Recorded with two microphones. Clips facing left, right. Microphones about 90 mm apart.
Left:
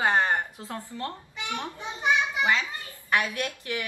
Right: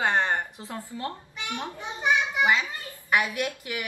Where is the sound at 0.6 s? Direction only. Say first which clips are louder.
Right 1 dB; 20° right (ahead or behind).